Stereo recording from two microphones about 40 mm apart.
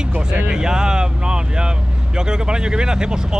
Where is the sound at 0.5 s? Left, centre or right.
Centre.